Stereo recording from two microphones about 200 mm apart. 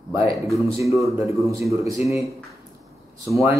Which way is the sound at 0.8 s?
15° right (ahead or behind).